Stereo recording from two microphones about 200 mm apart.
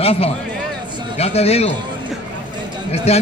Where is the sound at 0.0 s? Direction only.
30° left (ahead or behind).